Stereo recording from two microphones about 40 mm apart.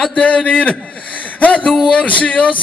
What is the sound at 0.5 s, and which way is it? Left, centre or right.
Speech, left.